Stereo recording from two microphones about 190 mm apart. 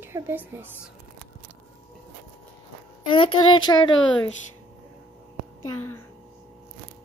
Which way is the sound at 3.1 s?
25° left (ahead or behind).